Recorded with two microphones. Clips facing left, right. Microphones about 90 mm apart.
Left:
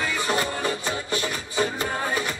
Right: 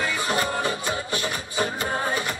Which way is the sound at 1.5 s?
40° right (ahead or behind).